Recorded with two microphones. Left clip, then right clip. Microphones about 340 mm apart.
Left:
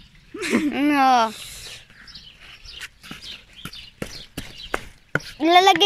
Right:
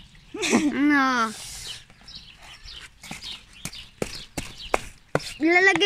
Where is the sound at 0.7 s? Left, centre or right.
Centre.